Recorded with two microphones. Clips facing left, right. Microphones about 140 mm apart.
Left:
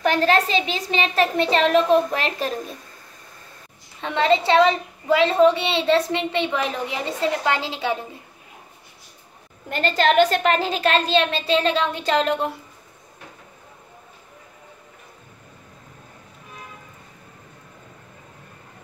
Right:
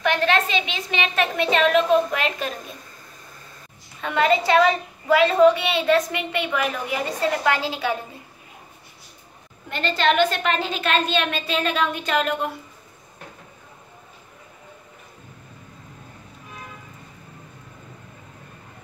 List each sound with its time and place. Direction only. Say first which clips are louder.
0.0 s a child's voice: left 2 dB; 35° left (ahead or behind)
4.0 s a woman's voice: left 1 dB; 25° left (ahead or behind)
9.7 s a child's voice: left 2 dB; 40° left (ahead or behind)